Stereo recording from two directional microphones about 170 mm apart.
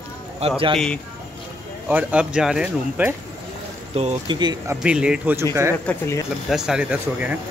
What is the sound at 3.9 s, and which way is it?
Speech, 30° right (ahead or behind).